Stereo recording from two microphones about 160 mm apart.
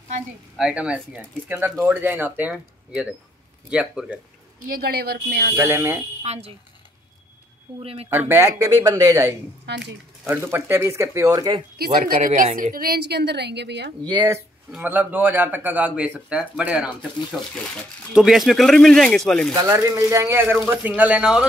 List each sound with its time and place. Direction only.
0.6 s speech: 5° right (ahead or behind)
4.6 s a woman's voice: 70° right (ahead or behind); by 5.6 s 90° right
5.6 s speech: 15° right (ahead or behind)
6.2 s speech: 40° right (ahead or behind)
7.8 s speech: 35° right (ahead or behind)
8.1 s speech: 15° right (ahead or behind)
9.7 s a woman's voice: 90° right
10.2 s speech: 15° right (ahead or behind)
12.1 s a woman's voice: 60° right (ahead or behind); by 13.9 s 90° right
14.0 s speech: 25° right (ahead or behind)
14.7 s speech: 10° right (ahead or behind)
19.5 s speech: 20° right (ahead or behind); by 21.5 s 5° right (ahead or behind)